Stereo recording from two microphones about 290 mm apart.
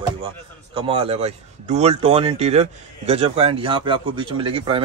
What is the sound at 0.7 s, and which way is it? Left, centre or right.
Speech, centre.